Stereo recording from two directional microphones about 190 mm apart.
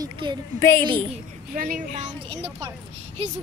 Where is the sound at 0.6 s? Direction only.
10° left (ahead or behind).